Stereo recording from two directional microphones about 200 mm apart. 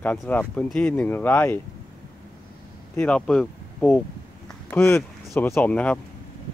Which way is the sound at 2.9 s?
5° left (ahead or behind).